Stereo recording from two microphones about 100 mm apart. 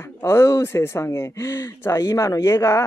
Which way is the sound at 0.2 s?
30° left (ahead or behind).